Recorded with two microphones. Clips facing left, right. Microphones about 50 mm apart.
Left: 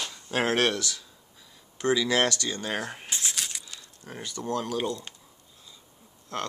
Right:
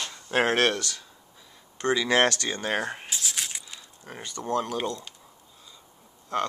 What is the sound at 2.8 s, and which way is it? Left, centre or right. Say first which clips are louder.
Speech: right 4 dB; centre.